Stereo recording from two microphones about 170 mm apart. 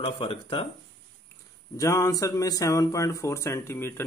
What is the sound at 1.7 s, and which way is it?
Speech, 20° left (ahead or behind).